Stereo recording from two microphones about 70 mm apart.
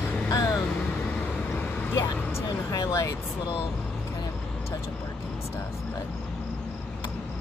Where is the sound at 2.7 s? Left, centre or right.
Left.